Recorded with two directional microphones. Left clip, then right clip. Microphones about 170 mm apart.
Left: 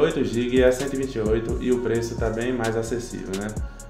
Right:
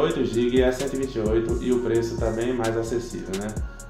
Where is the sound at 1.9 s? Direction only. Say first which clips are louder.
Right 1 dB; 20° left (ahead or behind).